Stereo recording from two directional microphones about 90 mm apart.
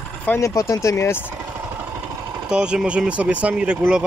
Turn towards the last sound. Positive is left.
turn(degrees=-10)  # may be behind; listen again after turning